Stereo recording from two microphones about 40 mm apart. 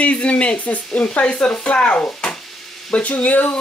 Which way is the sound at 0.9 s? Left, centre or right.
Left.